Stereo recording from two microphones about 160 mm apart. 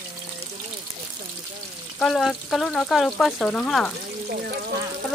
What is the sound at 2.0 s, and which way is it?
Speech, centre (ahead or behind).